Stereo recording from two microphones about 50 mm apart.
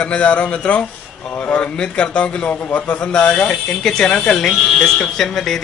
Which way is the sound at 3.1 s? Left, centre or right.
Centre.